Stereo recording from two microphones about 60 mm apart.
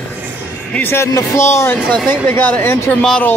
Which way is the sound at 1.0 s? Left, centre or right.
Left.